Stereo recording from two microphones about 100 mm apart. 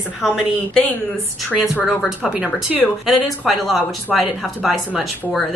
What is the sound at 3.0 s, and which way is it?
Speech, centre (ahead or behind).